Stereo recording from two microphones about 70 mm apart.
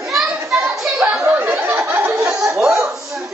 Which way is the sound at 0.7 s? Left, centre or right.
Right.